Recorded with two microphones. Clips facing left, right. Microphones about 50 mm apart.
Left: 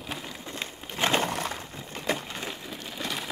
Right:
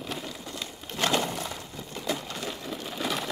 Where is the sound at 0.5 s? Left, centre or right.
Left.